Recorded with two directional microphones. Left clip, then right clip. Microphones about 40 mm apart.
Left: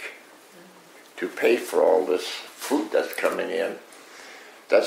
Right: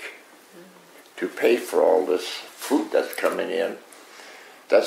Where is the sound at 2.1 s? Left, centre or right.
Right.